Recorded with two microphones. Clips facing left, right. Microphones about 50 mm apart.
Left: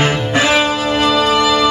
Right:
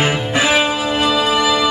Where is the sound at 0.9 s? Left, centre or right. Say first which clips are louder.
Left 4 dB; left.